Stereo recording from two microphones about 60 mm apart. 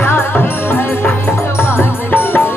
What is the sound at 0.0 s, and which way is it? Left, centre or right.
Music, left.